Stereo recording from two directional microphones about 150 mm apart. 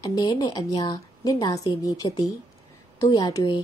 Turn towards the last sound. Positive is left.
turn(degrees=30)  # may be behind; listen again after turning